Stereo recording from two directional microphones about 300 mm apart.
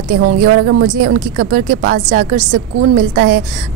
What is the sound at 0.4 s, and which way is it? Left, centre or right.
A woman's voice, right.